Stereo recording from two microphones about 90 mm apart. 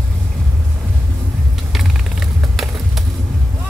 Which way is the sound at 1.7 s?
Centre (ahead or behind).